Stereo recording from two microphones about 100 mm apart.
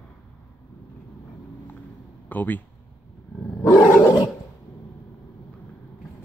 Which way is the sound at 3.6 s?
35° left (ahead or behind).